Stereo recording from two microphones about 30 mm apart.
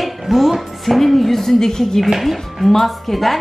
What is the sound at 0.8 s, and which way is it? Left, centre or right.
Speech, centre.